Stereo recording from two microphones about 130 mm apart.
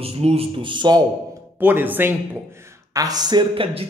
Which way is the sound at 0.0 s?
50° right (ahead or behind).